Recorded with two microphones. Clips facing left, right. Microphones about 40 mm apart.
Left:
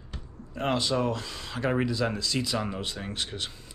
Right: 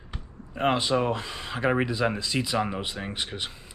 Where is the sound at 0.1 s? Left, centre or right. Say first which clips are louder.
Right 1 dB; right.